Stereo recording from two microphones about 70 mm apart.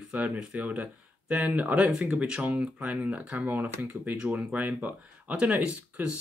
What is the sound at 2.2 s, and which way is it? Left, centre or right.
Speech, centre.